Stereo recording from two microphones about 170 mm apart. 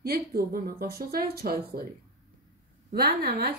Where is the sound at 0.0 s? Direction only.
60° right (ahead or behind).